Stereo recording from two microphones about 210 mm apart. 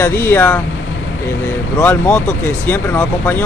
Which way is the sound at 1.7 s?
5° left (ahead or behind).